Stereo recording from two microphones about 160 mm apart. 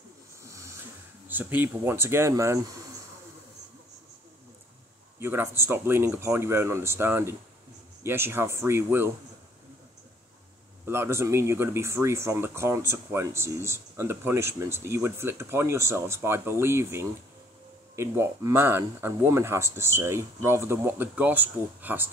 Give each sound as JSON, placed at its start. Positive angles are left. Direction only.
{"t": 0.4, "sound": "music", "side_deg": -20}
{"t": 1.3, "sound": "speech", "side_deg": -10}
{"t": 5.2, "sound": "speech", "side_deg": -15}
{"t": 10.9, "sound": "speech", "side_deg": -15}